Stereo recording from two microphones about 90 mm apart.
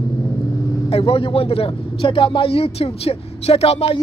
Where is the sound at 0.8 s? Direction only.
90° left.